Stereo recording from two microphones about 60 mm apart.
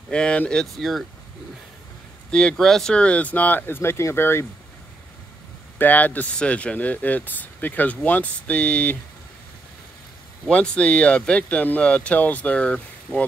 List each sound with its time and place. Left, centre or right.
0.1 s speech: centre
0.7 s speech: centre
2.3 s speech: centre
3.0 s speech: left
5.8 s speech: left
10.5 s speech: centre